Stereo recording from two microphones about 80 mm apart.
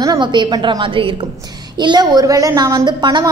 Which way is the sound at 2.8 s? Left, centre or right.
Right.